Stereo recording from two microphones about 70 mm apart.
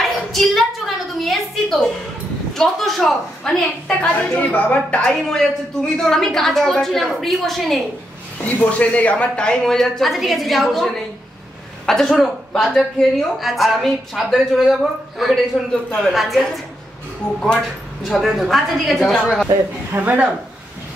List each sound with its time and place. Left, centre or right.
0.0 s a sound: centre
2.5 s speech: centre
4.1 s a woman's voice: left
5.2 s a woman's voice: centre
8.6 s a woman's voice: centre
17.2 s a woman's voice: centre
18.0 s speech: centre
19.9 s speech: right